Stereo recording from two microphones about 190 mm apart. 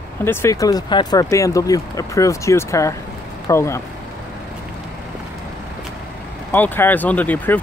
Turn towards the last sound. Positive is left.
turn(degrees=10)  # may be behind; listen again after turning